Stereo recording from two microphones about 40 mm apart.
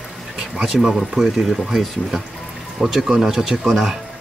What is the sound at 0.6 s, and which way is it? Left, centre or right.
Speech, centre.